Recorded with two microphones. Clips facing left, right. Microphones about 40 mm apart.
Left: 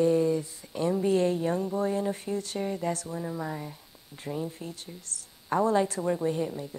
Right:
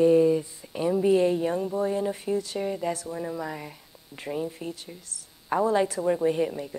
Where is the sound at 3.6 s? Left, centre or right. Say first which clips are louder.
Even; right.